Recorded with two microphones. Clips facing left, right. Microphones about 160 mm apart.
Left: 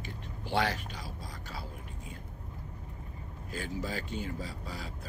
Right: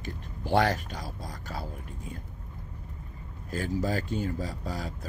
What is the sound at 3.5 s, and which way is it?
Speech, 45° right (ahead or behind).